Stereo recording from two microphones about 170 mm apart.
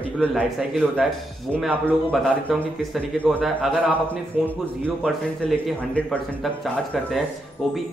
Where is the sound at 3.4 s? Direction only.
5° right (ahead or behind).